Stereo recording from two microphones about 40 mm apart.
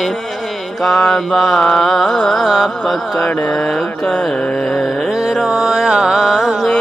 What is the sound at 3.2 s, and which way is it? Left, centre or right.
Music, left.